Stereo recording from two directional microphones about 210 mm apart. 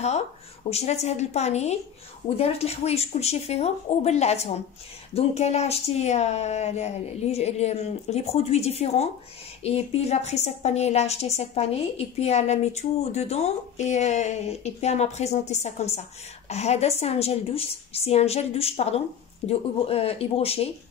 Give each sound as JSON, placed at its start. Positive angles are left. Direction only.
{"t": 0.7, "sound": "a woman's voice", "side_deg": 30}